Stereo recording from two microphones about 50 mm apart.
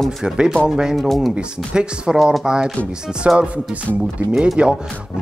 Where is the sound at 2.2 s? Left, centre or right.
Centre.